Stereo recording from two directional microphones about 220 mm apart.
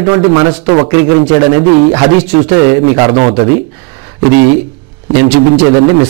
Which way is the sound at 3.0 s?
25° right (ahead or behind).